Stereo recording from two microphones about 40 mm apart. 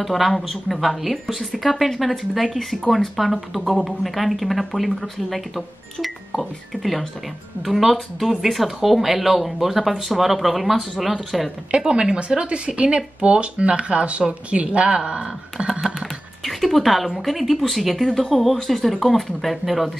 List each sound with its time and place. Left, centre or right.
0.0 s speech: centre
11.7 s speech: right
15.6 s music: right
16.4 s speech: centre